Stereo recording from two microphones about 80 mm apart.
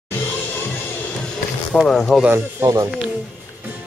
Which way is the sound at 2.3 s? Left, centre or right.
Right.